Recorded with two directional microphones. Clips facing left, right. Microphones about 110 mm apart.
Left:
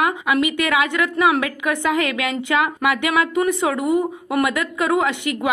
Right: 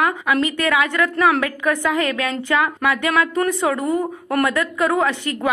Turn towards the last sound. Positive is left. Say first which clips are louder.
# right 1 dB
turn(degrees=20)  # may be behind; listen again after turning